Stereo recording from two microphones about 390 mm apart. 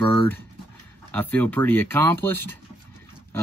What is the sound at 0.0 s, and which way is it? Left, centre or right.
Speech, centre.